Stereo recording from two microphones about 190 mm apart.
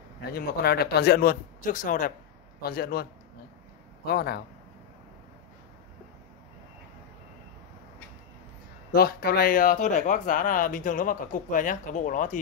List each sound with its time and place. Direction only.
0.2 s a man's voice: 55° left (ahead or behind)
8.9 s speech: 55° left (ahead or behind)